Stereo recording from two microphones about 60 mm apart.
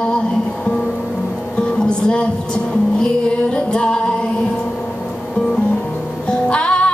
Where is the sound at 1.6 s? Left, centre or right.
Centre.